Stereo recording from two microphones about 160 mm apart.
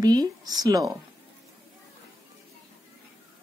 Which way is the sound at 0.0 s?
25° right (ahead or behind).